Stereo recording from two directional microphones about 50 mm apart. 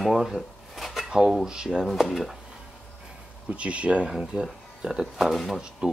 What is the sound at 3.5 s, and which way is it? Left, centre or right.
Speech, right.